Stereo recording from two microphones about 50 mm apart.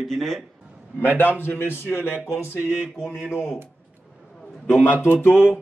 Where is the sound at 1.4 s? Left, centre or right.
Left.